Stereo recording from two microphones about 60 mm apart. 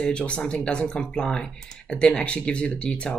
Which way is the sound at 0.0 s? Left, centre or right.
Centre.